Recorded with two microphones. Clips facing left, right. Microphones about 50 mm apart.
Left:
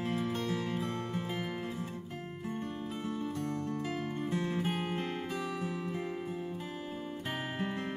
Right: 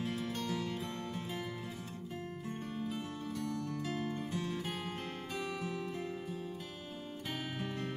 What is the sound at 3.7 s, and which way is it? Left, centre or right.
Music, left.